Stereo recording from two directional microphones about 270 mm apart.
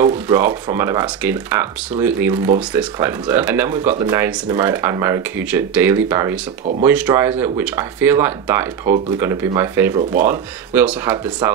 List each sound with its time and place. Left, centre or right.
0.4 s speech: centre